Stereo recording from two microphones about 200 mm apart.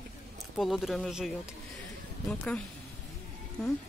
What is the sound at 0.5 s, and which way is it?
Speech, centre (ahead or behind).